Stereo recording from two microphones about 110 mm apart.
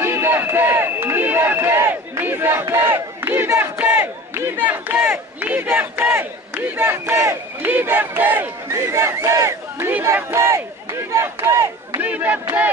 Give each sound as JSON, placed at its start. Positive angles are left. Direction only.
{"t": 0.0, "sound": "a sound", "side_deg": -20}
{"t": 8.7, "sound": "battle cry", "side_deg": -25}
{"t": 12.0, "sound": "speech", "side_deg": -15}